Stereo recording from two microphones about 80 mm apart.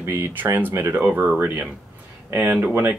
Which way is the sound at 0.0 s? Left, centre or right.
Right.